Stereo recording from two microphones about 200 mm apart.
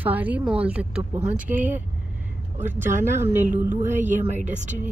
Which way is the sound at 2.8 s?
40° right (ahead or behind).